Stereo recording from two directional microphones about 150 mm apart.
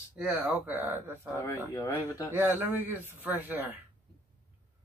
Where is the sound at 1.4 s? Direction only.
20° left (ahead or behind).